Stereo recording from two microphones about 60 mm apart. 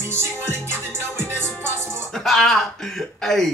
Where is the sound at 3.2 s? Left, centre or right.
Centre.